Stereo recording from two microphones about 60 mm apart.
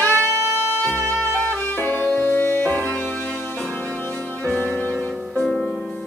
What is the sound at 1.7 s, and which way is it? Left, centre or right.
Music, left.